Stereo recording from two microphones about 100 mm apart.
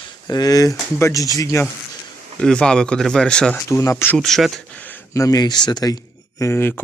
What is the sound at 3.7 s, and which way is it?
Speech, 30° left (ahead or behind).